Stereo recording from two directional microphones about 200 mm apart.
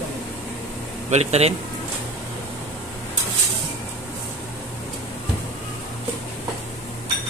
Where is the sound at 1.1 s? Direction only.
35° right (ahead or behind).